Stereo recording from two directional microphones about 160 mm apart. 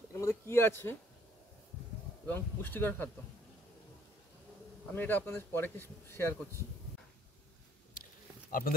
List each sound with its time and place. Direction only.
0.1 s a sound: 15° left (ahead or behind)
2.2 s speech: 10° left (ahead or behind)
4.9 s speech: 10° left (ahead or behind)
8.5 s speech: 60° left (ahead or behind)